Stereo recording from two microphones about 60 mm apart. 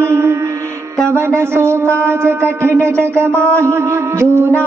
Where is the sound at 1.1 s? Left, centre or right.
Right.